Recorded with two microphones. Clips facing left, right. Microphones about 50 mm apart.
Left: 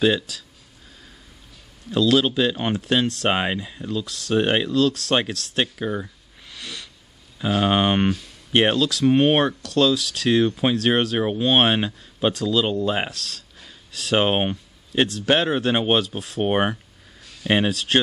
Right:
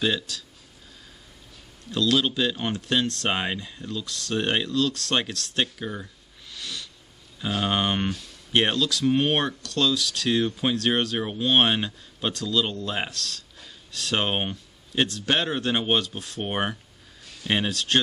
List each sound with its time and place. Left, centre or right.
0.0 s speech: centre
1.9 s speech: centre
5.8 s speech: centre
6.5 s a sound: centre
7.3 s speech: centre
9.0 s speech: centre